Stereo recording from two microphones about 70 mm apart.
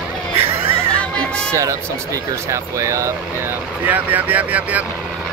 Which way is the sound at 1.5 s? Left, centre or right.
Right.